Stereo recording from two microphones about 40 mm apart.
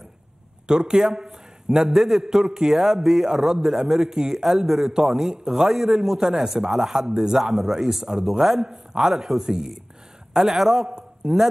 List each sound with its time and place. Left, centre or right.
0.7 s a man's voice: centre
7.3 s a man's voice: centre
10.9 s a sound: centre